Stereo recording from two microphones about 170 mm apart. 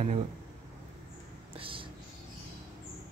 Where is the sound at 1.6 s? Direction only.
30° right (ahead or behind).